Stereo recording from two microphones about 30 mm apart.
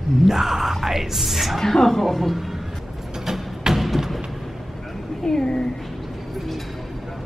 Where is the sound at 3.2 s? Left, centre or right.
Centre.